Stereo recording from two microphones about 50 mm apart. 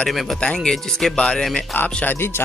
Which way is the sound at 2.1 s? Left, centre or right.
Left.